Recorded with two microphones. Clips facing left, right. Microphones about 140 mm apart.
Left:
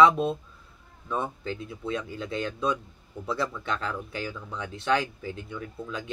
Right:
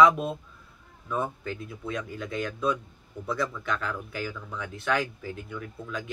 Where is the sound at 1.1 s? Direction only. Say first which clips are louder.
Even; 30° left (ahead or behind).